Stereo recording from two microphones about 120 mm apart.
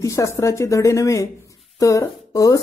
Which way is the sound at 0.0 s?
25° left (ahead or behind).